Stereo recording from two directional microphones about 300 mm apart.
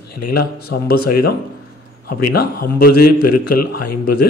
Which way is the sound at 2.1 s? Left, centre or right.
Left.